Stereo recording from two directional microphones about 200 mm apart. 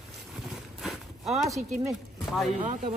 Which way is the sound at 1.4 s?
Centre (ahead or behind).